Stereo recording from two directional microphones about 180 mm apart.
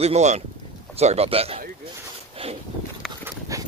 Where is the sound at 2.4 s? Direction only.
30° right (ahead or behind).